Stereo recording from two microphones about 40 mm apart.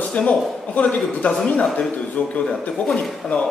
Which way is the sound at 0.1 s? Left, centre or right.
Left.